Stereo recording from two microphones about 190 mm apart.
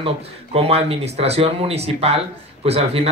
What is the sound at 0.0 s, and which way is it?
Speech, 30° right (ahead or behind).